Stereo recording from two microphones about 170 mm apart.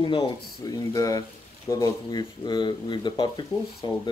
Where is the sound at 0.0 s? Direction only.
30° left (ahead or behind).